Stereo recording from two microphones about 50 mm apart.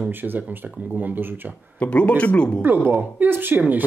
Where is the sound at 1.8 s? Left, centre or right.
Left.